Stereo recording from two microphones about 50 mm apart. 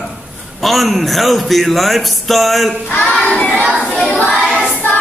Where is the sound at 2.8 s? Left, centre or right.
Left.